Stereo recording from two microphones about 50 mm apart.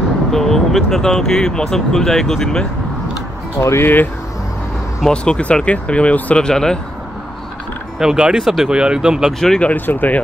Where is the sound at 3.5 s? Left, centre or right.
Left.